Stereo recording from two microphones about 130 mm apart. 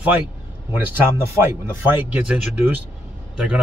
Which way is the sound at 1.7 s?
10° right (ahead or behind).